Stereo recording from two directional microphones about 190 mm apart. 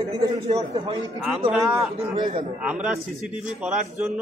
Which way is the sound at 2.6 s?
5° right (ahead or behind).